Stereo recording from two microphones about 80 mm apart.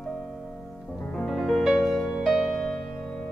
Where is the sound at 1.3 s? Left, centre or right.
Centre.